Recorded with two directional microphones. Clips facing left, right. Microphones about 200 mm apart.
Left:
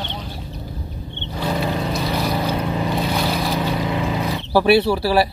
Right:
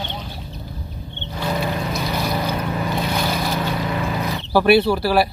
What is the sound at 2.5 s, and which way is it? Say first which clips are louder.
Boat: left 2 dB; 25° left (ahead or behind).